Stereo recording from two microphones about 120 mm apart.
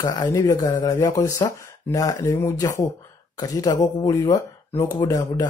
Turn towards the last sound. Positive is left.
turn(degrees=35)  # may be behind; listen again after turning